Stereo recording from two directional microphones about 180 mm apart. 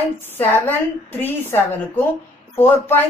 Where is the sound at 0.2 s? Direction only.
10° left (ahead or behind).